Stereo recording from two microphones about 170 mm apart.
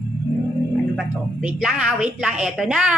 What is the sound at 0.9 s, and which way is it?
A woman's voice, 5° right (ahead or behind).